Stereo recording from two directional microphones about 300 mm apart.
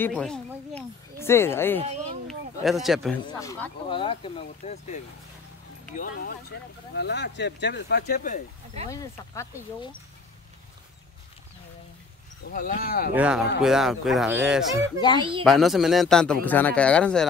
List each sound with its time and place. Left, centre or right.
0.0 s speech: centre
1.8 s speech: centre
2.2 s a sound: centre
3.3 s speech: centre; by 8.4 s left
8.8 s speech: centre
12.5 s speech: left
13.1 s a man's voice: centre
15.1 s speech: centre
15.4 s a man's voice: centre